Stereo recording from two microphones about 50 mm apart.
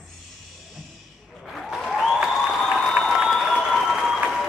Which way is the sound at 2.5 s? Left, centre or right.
Centre.